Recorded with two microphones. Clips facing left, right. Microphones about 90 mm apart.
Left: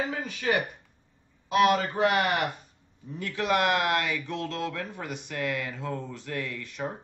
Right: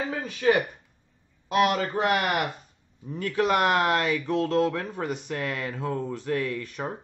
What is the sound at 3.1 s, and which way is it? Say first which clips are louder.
Speech: right 3 dB; 45° right (ahead or behind).